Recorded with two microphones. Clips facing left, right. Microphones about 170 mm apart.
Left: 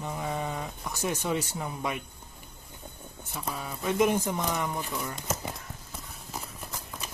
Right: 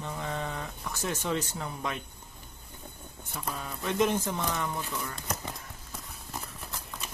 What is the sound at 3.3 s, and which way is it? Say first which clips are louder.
Speech: left 1 dB; 5° left (ahead or behind).